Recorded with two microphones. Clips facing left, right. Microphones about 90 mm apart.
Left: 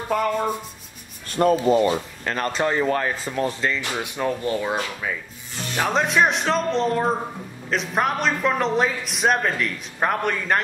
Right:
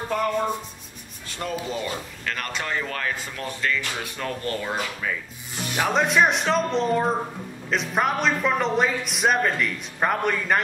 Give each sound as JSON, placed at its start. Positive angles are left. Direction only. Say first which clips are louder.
{"t": 0.1, "sound": "speech", "louder": "left 2 dB", "side_deg": 5}
{"t": 1.3, "sound": "speech", "louder": "left 12 dB", "side_deg": 45}
{"t": 1.9, "sound": "speech", "louder": "left 7 dB", "side_deg": 30}
{"t": 4.0, "sound": "speech", "louder": "left 5 dB", "side_deg": 15}
{"t": 5.8, "sound": "speech", "louder": "even", "side_deg": 0}